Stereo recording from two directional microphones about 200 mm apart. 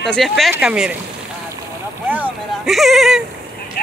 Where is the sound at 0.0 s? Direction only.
Centre (ahead or behind).